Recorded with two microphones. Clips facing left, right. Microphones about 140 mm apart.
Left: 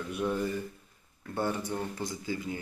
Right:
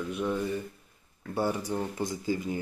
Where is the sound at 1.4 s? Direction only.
10° right (ahead or behind).